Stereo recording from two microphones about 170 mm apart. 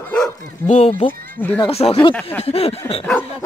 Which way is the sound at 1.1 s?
55° right (ahead or behind).